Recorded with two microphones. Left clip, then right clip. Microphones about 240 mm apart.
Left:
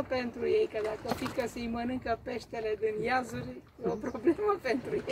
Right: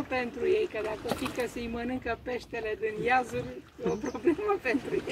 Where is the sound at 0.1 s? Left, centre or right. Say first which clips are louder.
Right 4 dB; left.